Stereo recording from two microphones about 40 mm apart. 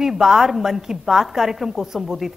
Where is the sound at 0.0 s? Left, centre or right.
Centre.